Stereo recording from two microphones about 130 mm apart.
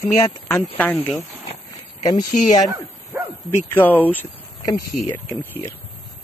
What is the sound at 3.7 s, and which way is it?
Speech, 15° left (ahead or behind).